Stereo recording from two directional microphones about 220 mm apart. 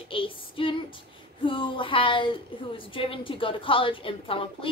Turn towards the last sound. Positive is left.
turn(degrees=25)  # may be behind; listen again after turning